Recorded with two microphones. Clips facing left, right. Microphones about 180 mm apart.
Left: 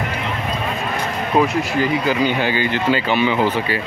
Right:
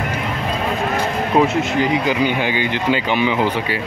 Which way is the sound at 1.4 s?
25° right (ahead or behind).